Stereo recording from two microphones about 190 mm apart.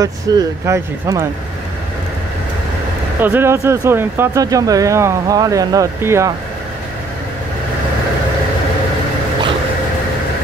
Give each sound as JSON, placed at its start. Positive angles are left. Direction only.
{"t": 0.0, "sound": "speech", "side_deg": -20}
{"t": 3.2, "sound": "speech", "side_deg": -10}